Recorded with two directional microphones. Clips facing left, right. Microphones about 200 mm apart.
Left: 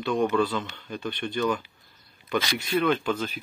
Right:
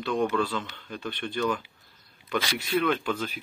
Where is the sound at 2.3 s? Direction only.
Centre (ahead or behind).